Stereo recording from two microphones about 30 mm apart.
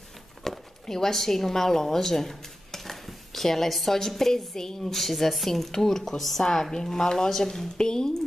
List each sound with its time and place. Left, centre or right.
0.4 s speech: centre